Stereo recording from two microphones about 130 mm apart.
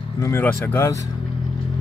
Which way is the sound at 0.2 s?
20° left (ahead or behind).